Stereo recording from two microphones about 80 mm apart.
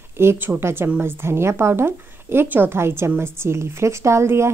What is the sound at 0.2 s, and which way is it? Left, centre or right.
Speech, right.